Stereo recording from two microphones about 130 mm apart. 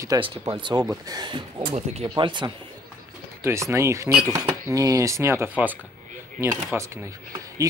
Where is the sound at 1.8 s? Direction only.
55° right (ahead or behind).